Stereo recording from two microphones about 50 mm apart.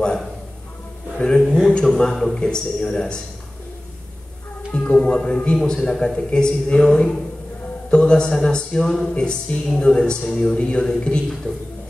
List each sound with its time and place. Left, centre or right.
0.0 s speech: centre
1.7 s a sound: centre
2.3 s speech: centre
4.7 s a woman's voice: left